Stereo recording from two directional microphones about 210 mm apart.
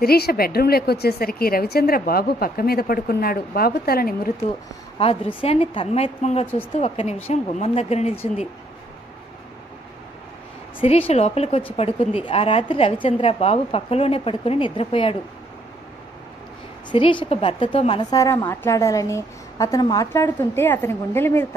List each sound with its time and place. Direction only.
0.0 s a woman's voice: 45° left (ahead or behind)
4.9 s a woman's voice: 25° left (ahead or behind)
10.8 s a woman's voice: 25° left (ahead or behind)
16.9 s a woman's voice: 25° left (ahead or behind)